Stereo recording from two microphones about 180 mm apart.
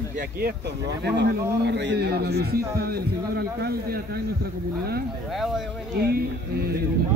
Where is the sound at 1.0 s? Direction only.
70° right (ahead or behind).